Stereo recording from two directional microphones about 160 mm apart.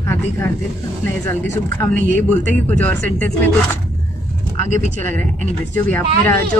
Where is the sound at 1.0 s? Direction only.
10° left (ahead or behind).